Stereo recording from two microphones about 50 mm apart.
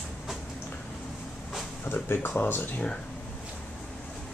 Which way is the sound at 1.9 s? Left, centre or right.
Left.